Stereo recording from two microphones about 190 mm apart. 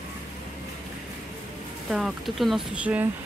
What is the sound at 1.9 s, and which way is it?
Speech, centre (ahead or behind).